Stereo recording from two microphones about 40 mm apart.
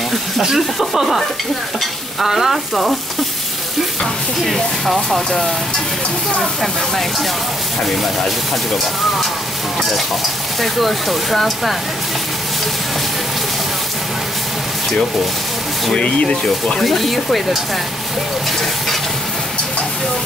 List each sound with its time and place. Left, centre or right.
0.4 s speech: centre
0.7 s speech: centre
2.2 s speech: centre
4.5 s speech: centre
6.6 s speech: centre
9.8 s stir: centre
10.6 s speech: centre
16.0 s speech: left
16.4 s speech: centre
16.8 s speech: centre